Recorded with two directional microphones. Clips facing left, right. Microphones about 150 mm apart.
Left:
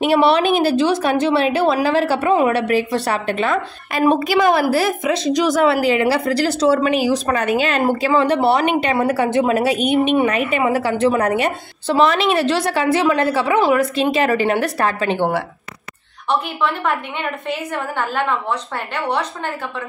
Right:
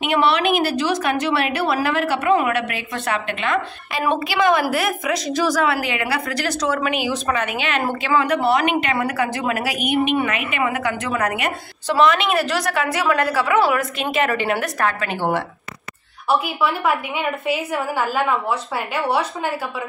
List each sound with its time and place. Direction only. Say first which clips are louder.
0.0 s a woman's voice: left 4 dB; 35° left (ahead or behind)
16.3 s a woman's voice: even; 5° right (ahead or behind)